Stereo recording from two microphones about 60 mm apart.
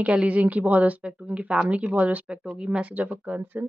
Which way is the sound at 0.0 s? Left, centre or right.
Right.